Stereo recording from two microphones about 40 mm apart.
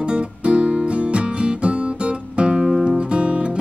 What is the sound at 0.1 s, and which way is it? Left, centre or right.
Music, right.